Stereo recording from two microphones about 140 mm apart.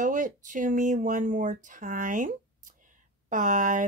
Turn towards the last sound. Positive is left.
turn(degrees=-65)  # may be behind; listen again after turning